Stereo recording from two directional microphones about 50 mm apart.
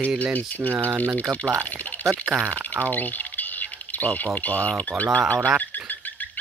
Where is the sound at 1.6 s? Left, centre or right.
Left.